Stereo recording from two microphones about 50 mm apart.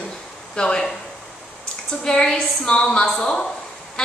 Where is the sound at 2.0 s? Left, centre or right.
Centre.